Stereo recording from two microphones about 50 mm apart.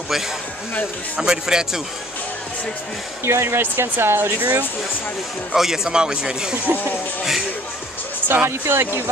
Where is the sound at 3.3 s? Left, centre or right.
Right.